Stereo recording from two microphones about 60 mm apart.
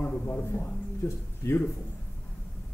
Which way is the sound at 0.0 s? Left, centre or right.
Left.